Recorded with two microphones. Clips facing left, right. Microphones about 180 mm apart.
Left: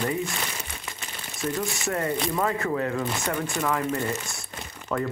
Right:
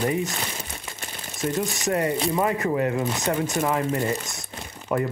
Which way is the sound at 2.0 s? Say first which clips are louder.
Right 3 dB; 20° right (ahead or behind).